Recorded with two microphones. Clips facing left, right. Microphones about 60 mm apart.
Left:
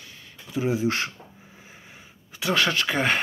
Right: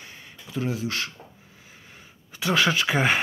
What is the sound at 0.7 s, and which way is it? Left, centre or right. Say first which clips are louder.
Speech: left 7 dB; left.